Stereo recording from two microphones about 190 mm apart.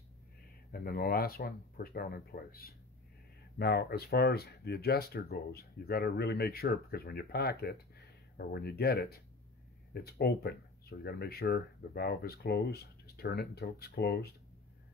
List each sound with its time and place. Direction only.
0.7 s speech: 50° left (ahead or behind)